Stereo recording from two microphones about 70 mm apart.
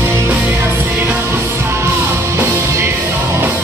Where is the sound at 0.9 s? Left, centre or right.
Right.